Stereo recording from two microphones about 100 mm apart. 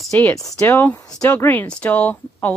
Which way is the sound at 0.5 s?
25° left (ahead or behind).